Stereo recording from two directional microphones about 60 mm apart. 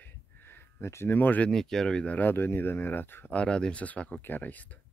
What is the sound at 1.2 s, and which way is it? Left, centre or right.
Speech, left.